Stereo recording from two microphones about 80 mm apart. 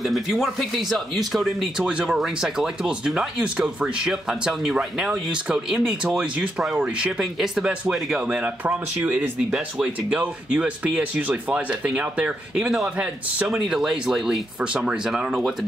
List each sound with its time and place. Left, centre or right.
0.0 s speech: centre